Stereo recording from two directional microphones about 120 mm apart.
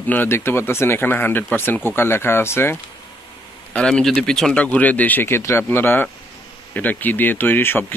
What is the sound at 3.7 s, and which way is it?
Speech, 5° left (ahead or behind).